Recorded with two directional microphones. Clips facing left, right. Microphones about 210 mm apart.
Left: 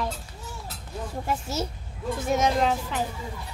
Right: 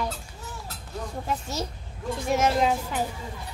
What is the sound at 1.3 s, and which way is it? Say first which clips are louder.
A child's voice: left 2 dB; 10° left (ahead or behind).